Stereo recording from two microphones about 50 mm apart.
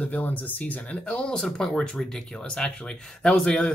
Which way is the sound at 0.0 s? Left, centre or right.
Left.